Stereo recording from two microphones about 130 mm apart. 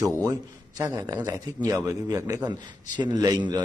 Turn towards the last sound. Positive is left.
turn(degrees=-30)  # may be behind; listen again after turning